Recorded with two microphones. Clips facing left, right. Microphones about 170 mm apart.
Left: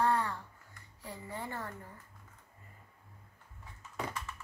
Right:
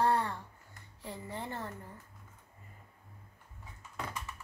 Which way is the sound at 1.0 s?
25° right (ahead or behind).